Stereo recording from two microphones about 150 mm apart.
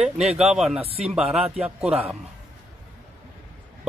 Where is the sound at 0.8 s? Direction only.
40° right (ahead or behind).